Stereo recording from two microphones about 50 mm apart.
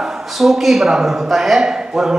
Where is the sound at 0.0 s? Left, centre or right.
Centre.